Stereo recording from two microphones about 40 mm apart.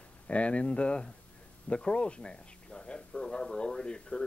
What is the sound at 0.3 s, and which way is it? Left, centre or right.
Speech, left.